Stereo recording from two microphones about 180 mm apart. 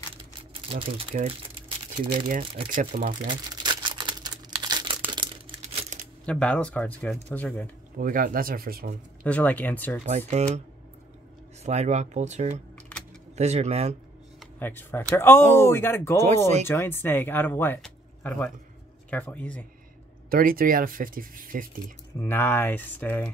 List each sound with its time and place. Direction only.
0.1 s crumpling: 30° right (ahead or behind)
2.7 s speech: 50° right (ahead or behind)
3.3 s crumpling: 25° right (ahead or behind)
6.2 s speech: 5° left (ahead or behind)
8.0 s speech: 50° right (ahead or behind)
9.2 s speech: 10° left (ahead or behind)
10.0 s speech: 40° right (ahead or behind)
11.6 s speech: 40° right (ahead or behind)
14.6 s speech: 10° left (ahead or behind)
20.2 s speech: 55° right (ahead or behind)
22.2 s speech: 10° left (ahead or behind)